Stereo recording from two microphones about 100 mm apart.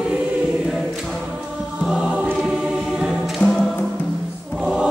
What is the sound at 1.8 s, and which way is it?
Choir, 5° right (ahead or behind).